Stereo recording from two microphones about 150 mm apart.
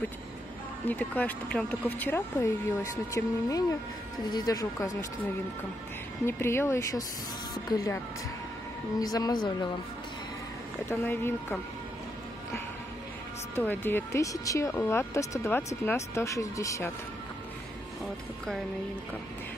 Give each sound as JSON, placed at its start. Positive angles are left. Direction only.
{"t": 0.8, "sound": "speech", "side_deg": 10}
{"t": 6.2, "sound": "speech", "side_deg": 15}
{"t": 9.0, "sound": "speech", "side_deg": 25}
{"t": 10.9, "sound": "speech", "side_deg": 15}
{"t": 13.6, "sound": "speech", "side_deg": 15}